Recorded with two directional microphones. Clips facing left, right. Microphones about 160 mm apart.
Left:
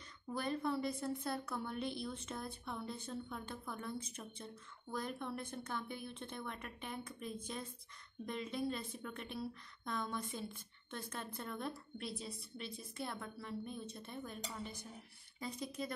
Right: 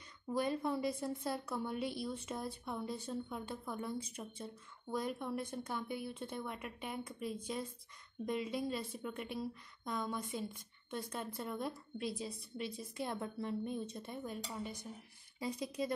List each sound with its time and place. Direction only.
0.4 s a woman's voice: 15° right (ahead or behind)
13.0 s a woman's voice: 20° right (ahead or behind)